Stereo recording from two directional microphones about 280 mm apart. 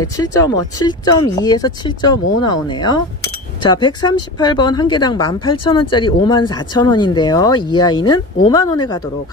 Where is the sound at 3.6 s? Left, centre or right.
Centre.